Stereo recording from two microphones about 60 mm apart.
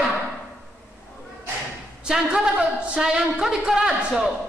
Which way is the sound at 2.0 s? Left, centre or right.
Centre.